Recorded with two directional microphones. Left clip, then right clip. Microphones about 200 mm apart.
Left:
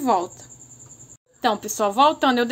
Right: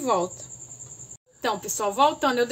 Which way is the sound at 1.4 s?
50° left (ahead or behind).